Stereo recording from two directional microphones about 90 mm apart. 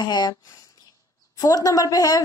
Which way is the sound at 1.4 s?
40° left (ahead or behind).